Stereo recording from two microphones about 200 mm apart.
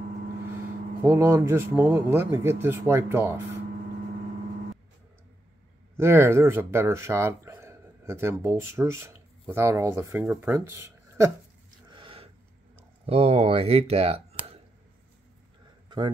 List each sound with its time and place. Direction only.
1.0 s speech: 15° right (ahead or behind)
5.9 s speech: 10° right (ahead or behind)
11.9 s a sound: 25° right (ahead or behind)
13.0 s speech: 30° right (ahead or behind)